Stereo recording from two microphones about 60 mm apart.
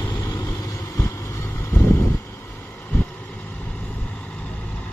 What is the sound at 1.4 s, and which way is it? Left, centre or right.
Vehicle, left.